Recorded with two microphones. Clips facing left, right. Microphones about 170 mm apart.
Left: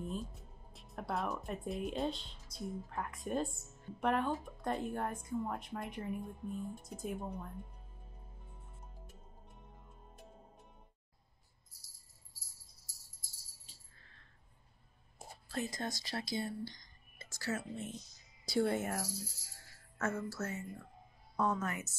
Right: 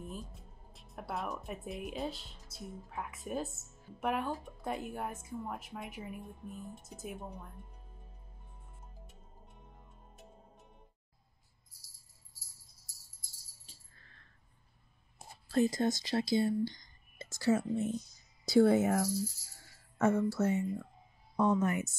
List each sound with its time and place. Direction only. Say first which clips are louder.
0.0 s speech: left 3 dB; centre (ahead or behind)
15.5 s speech: right 10 dB; 30° right (ahead or behind)
18.5 s speech: right 8 dB; 90° right
20.1 s speech: right 9 dB; centre (ahead or behind)
21.4 s speech: right 6 dB; 20° right (ahead or behind)